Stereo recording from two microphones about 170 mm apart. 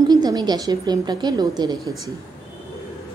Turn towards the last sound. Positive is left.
turn(degrees=-20)  # may be behind; listen again after turning